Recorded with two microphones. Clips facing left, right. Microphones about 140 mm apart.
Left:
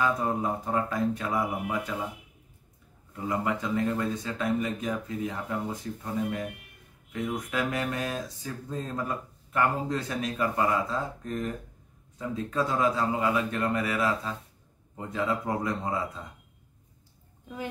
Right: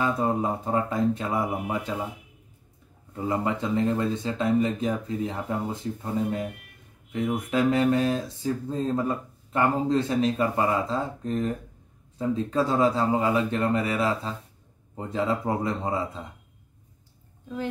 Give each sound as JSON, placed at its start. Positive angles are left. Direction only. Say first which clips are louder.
{"t": 0.0, "sound": "speech", "louder": "right 2 dB", "side_deg": -25}
{"t": 3.2, "sound": "speech", "louder": "right 3 dB", "side_deg": -30}
{"t": 7.1, "sound": "speech", "louder": "right 5 dB", "side_deg": -25}